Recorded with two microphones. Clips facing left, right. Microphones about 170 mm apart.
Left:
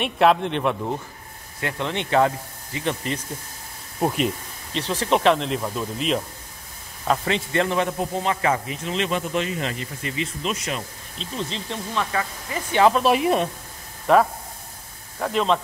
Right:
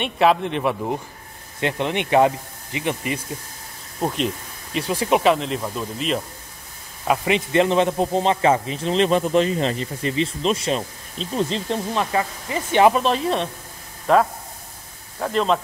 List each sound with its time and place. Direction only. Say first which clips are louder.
0.0 s speech: even; centre (ahead or behind)
1.6 s speech: right 4 dB; 20° right (ahead or behind)
4.0 s speech: left 1 dB; 5° left (ahead or behind)
4.7 s speech: right 2 dB; 10° right (ahead or behind)
7.1 s a man's voice: right 3 dB; 15° right (ahead or behind)
11.1 s speech: right 7 dB; 40° right (ahead or behind)
13.0 s speech: left 2 dB; 10° left (ahead or behind)
15.1 s speech: right 1 dB; 5° right (ahead or behind)